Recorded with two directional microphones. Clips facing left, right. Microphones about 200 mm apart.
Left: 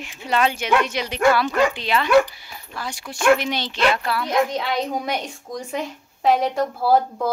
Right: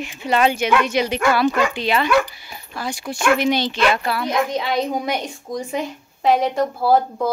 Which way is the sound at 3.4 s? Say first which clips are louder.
Right 4 dB; 5° right (ahead or behind).